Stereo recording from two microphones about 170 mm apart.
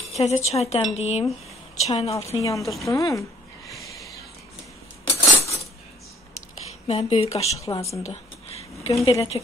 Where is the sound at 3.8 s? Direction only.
20° left (ahead or behind).